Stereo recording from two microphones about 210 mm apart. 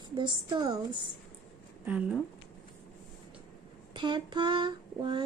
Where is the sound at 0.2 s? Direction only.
20° right (ahead or behind).